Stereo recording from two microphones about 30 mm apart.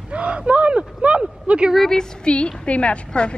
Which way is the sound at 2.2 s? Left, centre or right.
Left.